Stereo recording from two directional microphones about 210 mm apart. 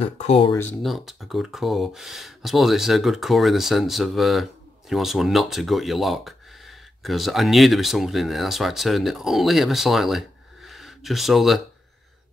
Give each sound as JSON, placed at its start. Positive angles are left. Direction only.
{"t": 0.0, "sound": "speech", "side_deg": 30}
{"t": 0.8, "sound": "speech", "side_deg": 0}